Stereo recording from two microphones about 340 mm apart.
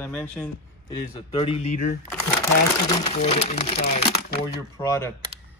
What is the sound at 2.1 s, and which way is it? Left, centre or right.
Speech, centre.